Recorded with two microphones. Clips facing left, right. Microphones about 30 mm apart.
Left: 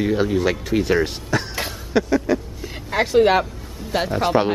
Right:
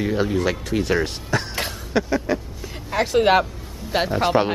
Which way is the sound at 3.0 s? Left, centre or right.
Centre.